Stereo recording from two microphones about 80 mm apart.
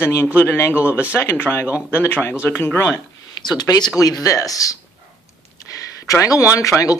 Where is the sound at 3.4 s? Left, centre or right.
Left.